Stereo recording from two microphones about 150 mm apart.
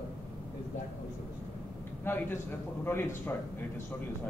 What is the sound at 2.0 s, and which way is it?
A man's voice, 15° left (ahead or behind).